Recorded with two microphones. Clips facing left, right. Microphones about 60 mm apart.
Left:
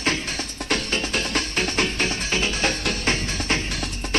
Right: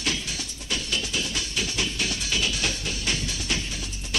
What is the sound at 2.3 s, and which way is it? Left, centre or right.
Music, left.